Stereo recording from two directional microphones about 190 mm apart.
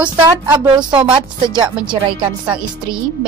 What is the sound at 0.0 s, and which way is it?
A woman's voice, 25° right (ahead or behind).